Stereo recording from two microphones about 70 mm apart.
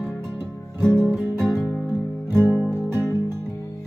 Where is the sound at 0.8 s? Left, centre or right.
Centre.